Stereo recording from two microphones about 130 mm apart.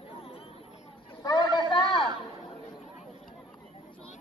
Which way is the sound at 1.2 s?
30° left (ahead or behind).